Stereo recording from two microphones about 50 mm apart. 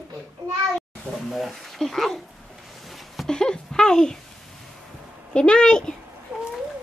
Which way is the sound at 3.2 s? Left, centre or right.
Centre.